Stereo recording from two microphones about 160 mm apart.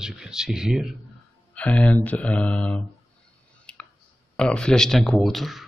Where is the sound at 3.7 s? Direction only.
5° left (ahead or behind).